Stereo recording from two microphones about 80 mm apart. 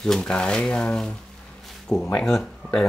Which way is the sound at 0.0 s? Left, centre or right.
Centre.